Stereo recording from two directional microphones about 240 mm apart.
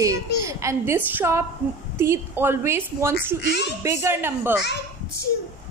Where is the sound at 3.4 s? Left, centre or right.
Left.